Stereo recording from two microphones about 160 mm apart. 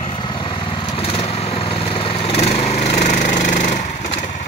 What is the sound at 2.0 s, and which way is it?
Lawn mower, 35° left (ahead or behind).